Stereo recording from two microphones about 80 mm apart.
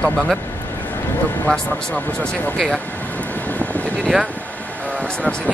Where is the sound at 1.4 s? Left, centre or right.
Centre.